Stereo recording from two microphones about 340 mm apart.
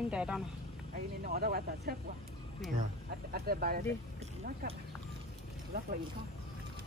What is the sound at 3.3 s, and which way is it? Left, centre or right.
Speech, right.